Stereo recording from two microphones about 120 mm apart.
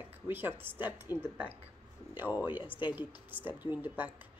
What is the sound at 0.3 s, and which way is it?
Speech, 20° right (ahead or behind).